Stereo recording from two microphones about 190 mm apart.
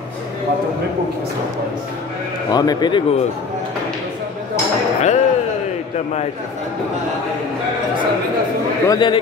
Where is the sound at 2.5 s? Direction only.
20° left (ahead or behind).